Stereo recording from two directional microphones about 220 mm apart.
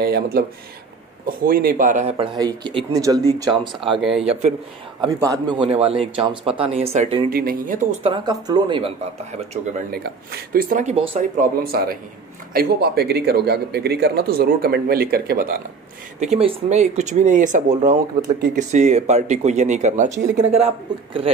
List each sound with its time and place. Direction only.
0.0 s speech: 45° right (ahead or behind); by 4.6 s 30° right (ahead or behind)
5.0 s speech: 20° right (ahead or behind)
7.2 s speech: 40° right (ahead or behind)
8.1 s speech: 20° right (ahead or behind)
9.9 s speech: 45° right (ahead or behind)
16.2 s speech: 30° right (ahead or behind)